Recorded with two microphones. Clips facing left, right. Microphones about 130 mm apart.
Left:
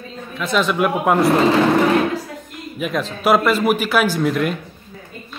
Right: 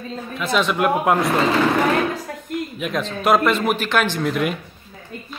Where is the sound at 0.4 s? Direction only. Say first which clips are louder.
Left 2 dB; centre (ahead or behind).